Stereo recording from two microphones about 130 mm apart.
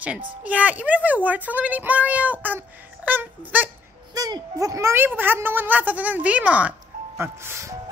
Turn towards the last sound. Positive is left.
turn(degrees=-20)  # may be behind; listen again after turning